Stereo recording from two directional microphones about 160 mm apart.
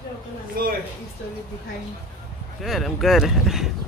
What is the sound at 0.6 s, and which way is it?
Speech, 70° right (ahead or behind).